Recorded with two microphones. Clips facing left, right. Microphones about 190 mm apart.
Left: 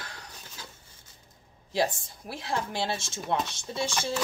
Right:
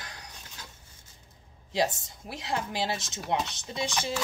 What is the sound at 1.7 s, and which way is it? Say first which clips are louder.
A woman's voice: even; 20° right (ahead or behind).